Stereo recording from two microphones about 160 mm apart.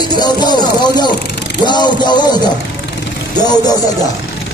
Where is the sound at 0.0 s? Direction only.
25° left (ahead or behind).